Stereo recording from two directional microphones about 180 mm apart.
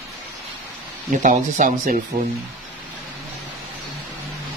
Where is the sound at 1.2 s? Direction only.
45° right (ahead or behind).